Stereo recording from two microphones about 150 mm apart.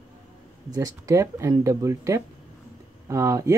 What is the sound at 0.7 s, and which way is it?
Speech, 20° right (ahead or behind).